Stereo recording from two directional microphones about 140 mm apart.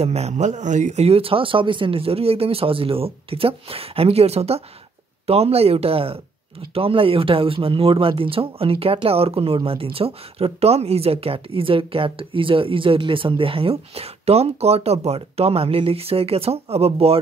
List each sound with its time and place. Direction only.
0.0 s speech: 50° right (ahead or behind)